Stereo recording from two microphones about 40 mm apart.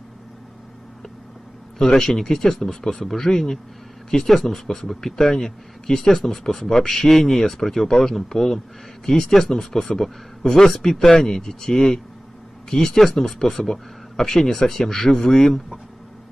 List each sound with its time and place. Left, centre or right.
1.8 s speech: centre